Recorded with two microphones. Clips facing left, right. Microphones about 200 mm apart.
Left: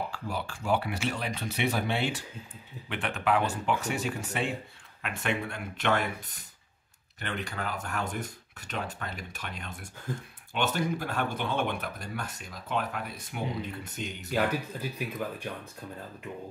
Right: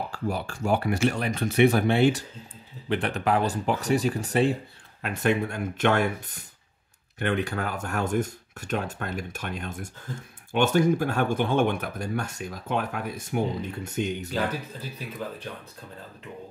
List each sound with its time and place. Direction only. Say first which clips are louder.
0.1 s speech: right 5 dB; 45° right (ahead or behind)
7.2 s speech: right 9 dB; 50° right (ahead or behind)
14.3 s speech: even; 15° left (ahead or behind)